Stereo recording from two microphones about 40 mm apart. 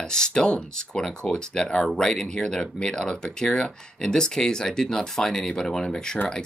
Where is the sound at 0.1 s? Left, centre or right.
Centre.